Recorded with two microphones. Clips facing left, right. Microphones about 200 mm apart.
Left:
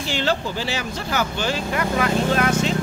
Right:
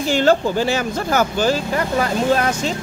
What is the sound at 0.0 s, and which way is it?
Speech, 45° right (ahead or behind).